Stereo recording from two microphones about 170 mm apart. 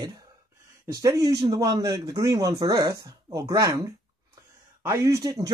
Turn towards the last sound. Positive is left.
turn(degrees=-20)  # may be behind; listen again after turning